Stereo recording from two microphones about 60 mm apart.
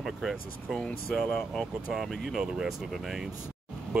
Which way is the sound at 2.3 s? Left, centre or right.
Centre.